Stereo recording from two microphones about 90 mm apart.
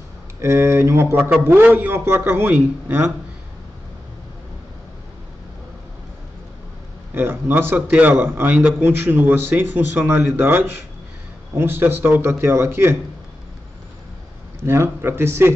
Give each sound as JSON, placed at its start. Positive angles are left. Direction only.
{"t": 0.4, "sound": "a man's voice", "side_deg": -30}
{"t": 7.2, "sound": "a man's voice", "side_deg": -25}
{"t": 14.6, "sound": "a man's voice", "side_deg": -30}